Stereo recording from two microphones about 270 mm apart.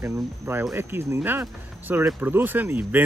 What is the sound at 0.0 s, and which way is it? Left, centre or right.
Speech, centre.